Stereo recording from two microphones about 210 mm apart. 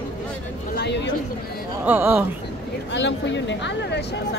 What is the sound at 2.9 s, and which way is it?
Speech, 60° left (ahead or behind).